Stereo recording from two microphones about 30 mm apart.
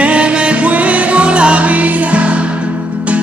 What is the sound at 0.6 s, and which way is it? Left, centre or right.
Music, right.